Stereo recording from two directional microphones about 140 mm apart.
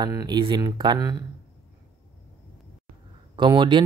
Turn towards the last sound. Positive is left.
turn(degrees=-35)  # may be behind; listen again after turning